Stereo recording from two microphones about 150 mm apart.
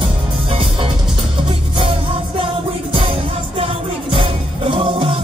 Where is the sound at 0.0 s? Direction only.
35° right (ahead or behind).